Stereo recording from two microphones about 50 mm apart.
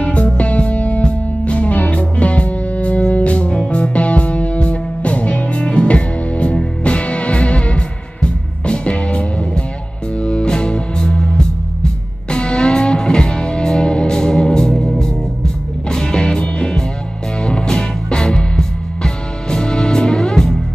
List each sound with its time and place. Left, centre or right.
0.0 s music: left